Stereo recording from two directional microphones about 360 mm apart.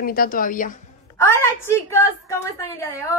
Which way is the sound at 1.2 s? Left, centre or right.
Centre.